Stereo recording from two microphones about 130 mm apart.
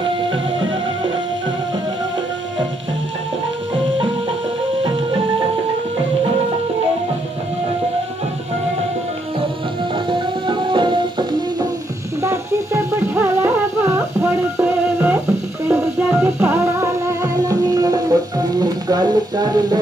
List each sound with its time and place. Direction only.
10.0 s music: 40° right (ahead or behind)
12.2 s music: 20° right (ahead or behind)